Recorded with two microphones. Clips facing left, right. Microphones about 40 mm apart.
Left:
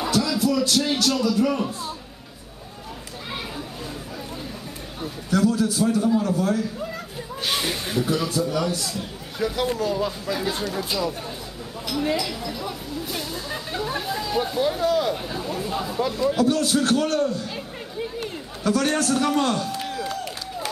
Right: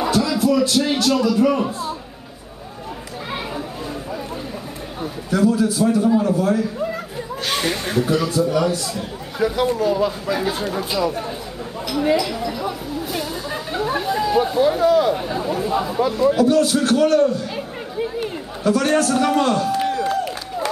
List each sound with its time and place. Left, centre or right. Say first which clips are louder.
0.1 s a man's voice: right 3 dB; right
5.3 s a man's voice: right 3 dB; right
7.4 s speech: right 3 dB; centre
16.4 s a man's voice: right 4 dB; right
17.6 s chatter: right 6 dB; centre
18.6 s a man's voice: right 5 dB; right
19.7 s a sound: right 9 dB; centre